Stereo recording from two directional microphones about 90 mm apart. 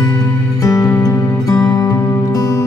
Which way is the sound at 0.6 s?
40° left (ahead or behind).